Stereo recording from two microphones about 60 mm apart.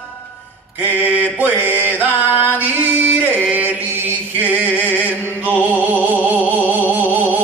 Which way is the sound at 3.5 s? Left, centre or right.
Right.